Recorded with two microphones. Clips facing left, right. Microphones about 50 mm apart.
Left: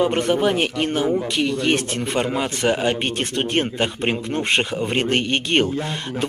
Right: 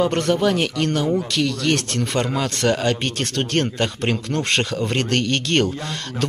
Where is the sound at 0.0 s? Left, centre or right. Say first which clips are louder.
Even; centre.